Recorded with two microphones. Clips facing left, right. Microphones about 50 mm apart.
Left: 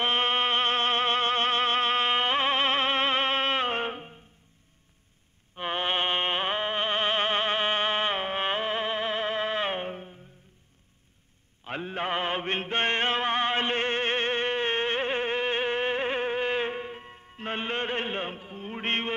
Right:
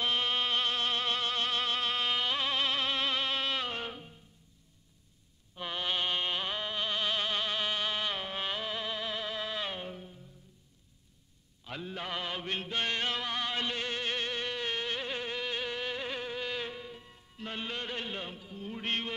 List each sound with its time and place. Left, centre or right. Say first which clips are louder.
0.0 s music: left 6 dB; left
5.6 s music: left 6 dB; left
11.6 s mantra: left 8 dB; left